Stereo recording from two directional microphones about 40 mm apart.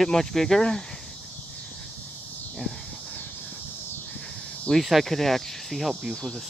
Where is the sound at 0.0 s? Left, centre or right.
Centre.